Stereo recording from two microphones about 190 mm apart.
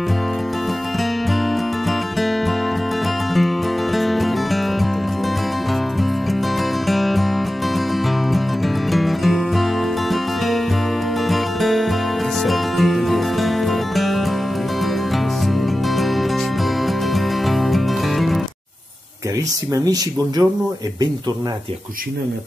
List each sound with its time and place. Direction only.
1.9 s music: centre (ahead or behind)
6.9 s music: centre (ahead or behind)
8.3 s music: centre (ahead or behind)
16.8 s music: centre (ahead or behind)
19.7 s speech: 20° right (ahead or behind)